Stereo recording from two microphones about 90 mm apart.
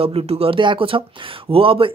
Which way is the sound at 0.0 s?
90° right.